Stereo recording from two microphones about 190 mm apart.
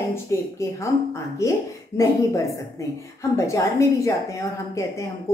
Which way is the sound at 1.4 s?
15° left (ahead or behind).